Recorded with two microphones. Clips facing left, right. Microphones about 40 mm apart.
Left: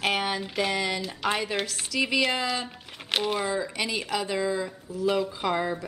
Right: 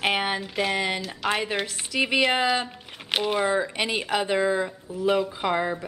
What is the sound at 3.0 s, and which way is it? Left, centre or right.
Speech, centre.